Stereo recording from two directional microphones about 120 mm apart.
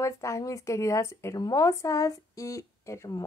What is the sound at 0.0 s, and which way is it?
Speech, 25° left (ahead or behind).